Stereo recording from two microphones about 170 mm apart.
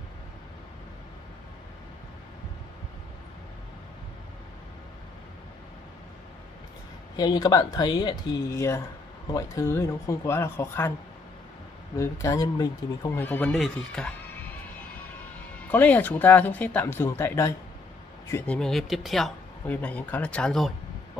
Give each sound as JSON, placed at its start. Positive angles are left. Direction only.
{"t": 7.2, "sound": "speech", "side_deg": 25}
{"t": 12.0, "sound": "speech", "side_deg": 15}
{"t": 13.2, "sound": "speech", "side_deg": 10}
{"t": 15.7, "sound": "speech", "side_deg": 10}